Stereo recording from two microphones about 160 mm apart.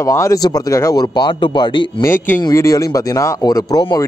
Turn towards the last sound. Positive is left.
turn(degrees=25)  # may be behind; listen again after turning